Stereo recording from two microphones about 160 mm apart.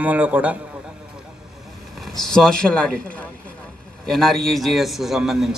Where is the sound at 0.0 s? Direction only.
10° right (ahead or behind).